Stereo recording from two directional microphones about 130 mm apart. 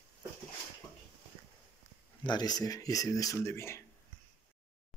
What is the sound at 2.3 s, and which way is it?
Speech, 30° left (ahead or behind).